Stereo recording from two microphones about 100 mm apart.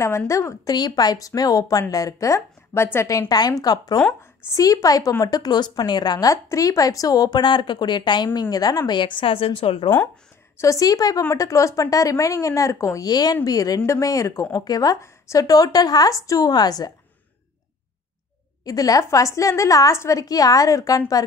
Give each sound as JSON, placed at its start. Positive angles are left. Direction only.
{"t": 0.3, "sound": "a woman's voice", "side_deg": 30}
{"t": 10.6, "sound": "speech", "side_deg": 35}
{"t": 18.7, "sound": "speech", "side_deg": 35}